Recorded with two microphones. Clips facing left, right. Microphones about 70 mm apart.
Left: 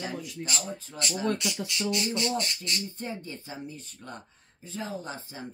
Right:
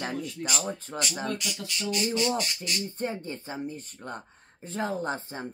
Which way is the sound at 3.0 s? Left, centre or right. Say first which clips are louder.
Right 4 dB; right.